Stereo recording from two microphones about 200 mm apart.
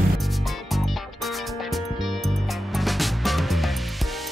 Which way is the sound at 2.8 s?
Centre (ahead or behind).